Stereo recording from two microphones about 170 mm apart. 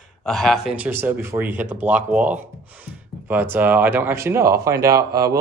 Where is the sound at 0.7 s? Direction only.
10° right (ahead or behind).